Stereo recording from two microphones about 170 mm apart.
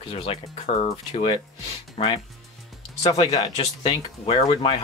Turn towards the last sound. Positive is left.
turn(degrees=30)  # may be behind; listen again after turning